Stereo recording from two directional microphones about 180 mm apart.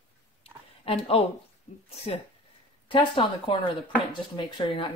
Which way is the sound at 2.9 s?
30° left (ahead or behind).